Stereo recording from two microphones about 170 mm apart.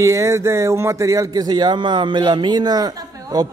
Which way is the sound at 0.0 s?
15° right (ahead or behind).